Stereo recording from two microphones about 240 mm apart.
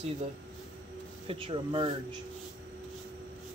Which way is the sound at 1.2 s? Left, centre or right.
Right.